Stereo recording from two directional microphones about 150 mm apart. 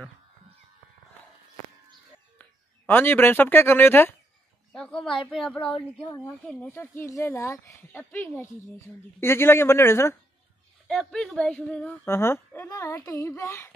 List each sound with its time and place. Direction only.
2.9 s a woman's voice: 15° left (ahead or behind)
5.6 s speech: 35° left (ahead or behind)
6.1 s a woman's voice: 10° left (ahead or behind)
8.0 s a woman's voice: 10° left (ahead or behind)
10.9 s a woman's voice: centre (ahead or behind); by 13.7 s 20° left (ahead or behind)